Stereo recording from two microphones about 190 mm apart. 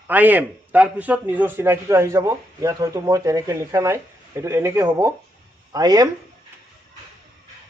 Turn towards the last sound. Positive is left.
turn(degrees=-20)  # may be behind; listen again after turning